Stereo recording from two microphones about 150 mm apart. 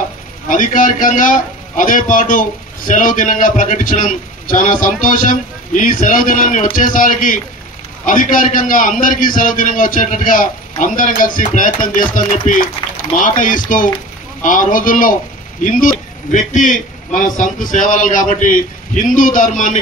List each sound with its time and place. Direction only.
0.5 s a man's voice: 65° left (ahead or behind)